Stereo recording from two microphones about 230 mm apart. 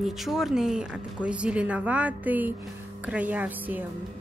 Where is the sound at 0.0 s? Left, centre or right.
Centre.